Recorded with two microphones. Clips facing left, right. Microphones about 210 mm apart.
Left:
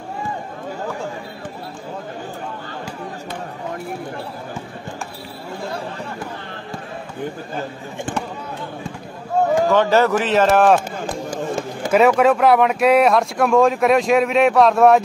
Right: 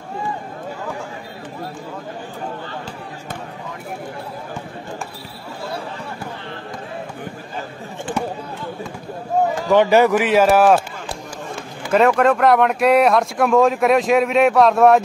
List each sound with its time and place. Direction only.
9.7 s speech: 15° right (ahead or behind)
11.2 s a sound: 45° left (ahead or behind)
11.9 s speech: 5° left (ahead or behind)